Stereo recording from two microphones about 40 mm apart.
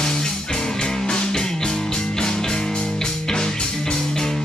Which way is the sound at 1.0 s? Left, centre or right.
Centre.